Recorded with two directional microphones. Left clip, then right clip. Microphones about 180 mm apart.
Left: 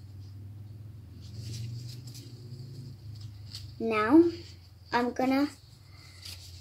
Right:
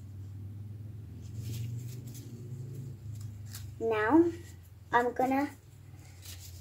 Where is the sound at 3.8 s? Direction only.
55° left (ahead or behind).